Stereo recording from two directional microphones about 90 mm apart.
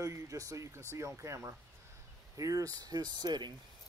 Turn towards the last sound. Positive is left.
turn(degrees=-50)  # may be behind; listen again after turning